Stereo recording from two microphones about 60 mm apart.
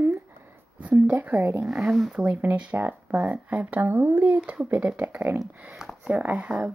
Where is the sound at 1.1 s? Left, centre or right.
Right.